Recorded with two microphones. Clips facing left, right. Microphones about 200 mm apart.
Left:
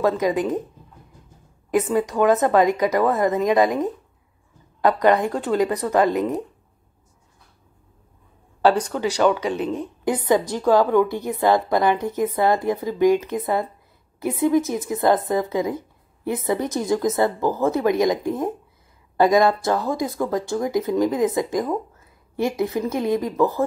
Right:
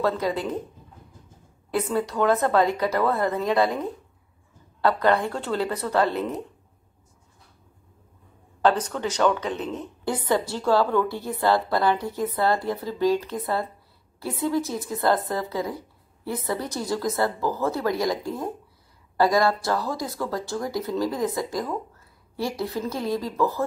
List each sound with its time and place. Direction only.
0.0 s a woman's voice: 15° left (ahead or behind)
1.7 s a woman's voice: 15° left (ahead or behind)
8.6 s a woman's voice: 10° left (ahead or behind)